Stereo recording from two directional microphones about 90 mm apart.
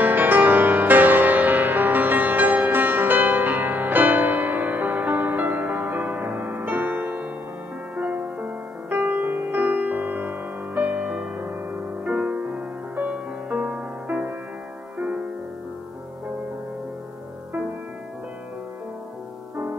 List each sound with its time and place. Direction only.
0.0 s music: 20° right (ahead or behind)
19.5 s music: 20° right (ahead or behind)